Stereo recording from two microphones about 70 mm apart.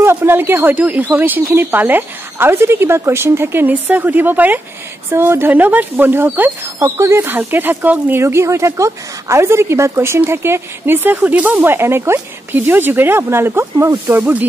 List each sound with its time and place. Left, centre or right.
0.0 s a woman's voice: right
3.6 s speech: right
6.8 s a woman's voice: right
7.2 s speech: right
8.2 s a woman's voice: right
14.1 s speech: right